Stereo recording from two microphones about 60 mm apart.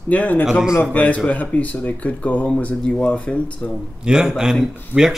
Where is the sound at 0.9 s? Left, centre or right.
Left.